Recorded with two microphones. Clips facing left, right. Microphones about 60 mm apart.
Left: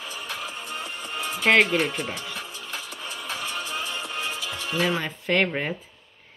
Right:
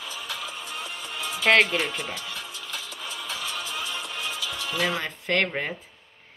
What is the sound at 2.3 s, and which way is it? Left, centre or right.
Music, left.